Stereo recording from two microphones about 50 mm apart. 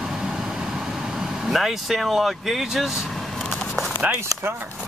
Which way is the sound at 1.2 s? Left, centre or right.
Centre.